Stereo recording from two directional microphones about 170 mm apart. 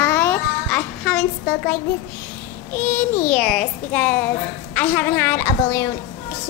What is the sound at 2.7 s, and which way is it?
Speech, 50° left (ahead or behind).